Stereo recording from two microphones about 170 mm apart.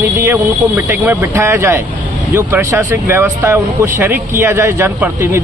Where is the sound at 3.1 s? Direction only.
15° right (ahead or behind).